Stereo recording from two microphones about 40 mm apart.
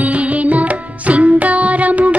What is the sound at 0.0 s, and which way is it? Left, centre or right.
Music, right.